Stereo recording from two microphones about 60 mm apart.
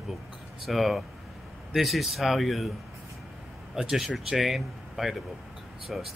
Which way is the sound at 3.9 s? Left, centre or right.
Centre.